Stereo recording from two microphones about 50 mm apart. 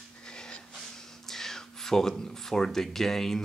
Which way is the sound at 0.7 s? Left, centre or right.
Centre.